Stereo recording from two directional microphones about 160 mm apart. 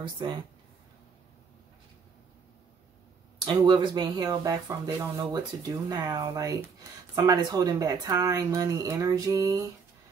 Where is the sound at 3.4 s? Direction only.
30° right (ahead or behind).